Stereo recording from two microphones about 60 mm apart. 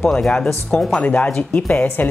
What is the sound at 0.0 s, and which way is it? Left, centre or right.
Speech, centre.